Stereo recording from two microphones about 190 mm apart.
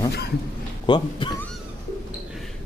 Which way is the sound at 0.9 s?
25° left (ahead or behind).